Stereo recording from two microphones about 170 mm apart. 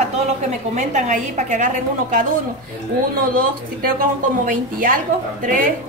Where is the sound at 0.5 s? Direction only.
45° right (ahead or behind).